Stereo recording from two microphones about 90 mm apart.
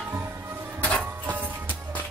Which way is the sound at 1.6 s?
15° left (ahead or behind).